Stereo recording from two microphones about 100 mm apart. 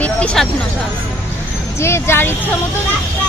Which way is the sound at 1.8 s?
25° left (ahead or behind).